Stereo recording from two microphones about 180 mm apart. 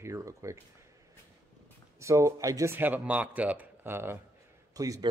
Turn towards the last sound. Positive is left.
turn(degrees=-20)  # may be behind; listen again after turning